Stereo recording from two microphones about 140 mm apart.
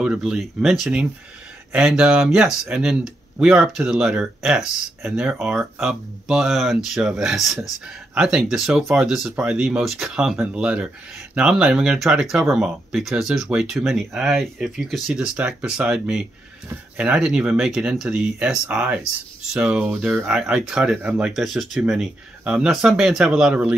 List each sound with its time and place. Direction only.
0.0 s speech: 5° right (ahead or behind)